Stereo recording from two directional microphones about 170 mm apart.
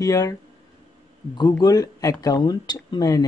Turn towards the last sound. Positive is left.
turn(degrees=20)  # may be behind; listen again after turning